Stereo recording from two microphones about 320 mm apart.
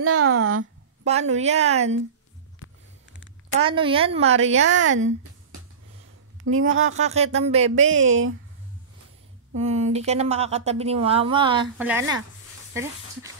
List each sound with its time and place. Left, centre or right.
0.0 s speech: right
1.0 s speech: right
3.6 s a woman's voice: centre
4.6 s speech: right
7.0 s speech: centre
7.7 s speech: right
9.6 s a woman's voice: right